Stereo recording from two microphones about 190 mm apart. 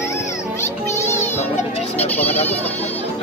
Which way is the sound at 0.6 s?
15° left (ahead or behind).